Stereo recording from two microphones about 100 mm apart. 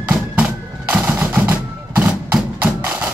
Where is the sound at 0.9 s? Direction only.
20° right (ahead or behind).